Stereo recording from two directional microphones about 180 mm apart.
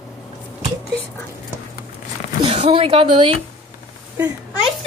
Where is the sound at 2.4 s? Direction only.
35° right (ahead or behind).